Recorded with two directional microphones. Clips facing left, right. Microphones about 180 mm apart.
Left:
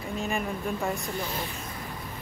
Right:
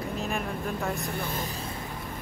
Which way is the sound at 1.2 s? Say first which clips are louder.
Even; 55° right (ahead or behind).